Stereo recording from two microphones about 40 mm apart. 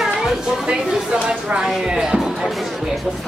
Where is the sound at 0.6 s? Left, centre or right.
Right.